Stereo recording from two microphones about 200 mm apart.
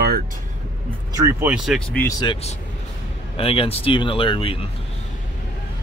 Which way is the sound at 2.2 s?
30° left (ahead or behind).